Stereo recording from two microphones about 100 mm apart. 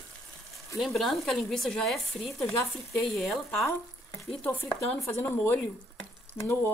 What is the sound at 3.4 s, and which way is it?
Frying, 30° left (ahead or behind).